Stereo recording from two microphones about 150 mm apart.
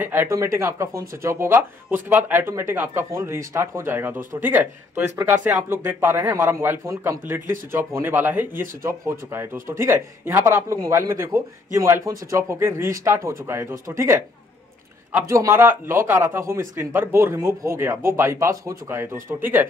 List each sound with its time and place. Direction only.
0.0 s a man's voice: 15° right (ahead or behind)